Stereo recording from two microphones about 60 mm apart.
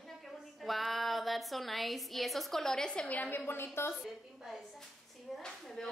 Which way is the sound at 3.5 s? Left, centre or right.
Left.